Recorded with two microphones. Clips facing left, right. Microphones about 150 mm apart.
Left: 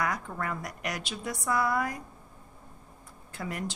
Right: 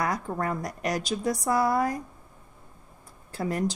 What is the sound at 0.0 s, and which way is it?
Speech, 35° right (ahead or behind).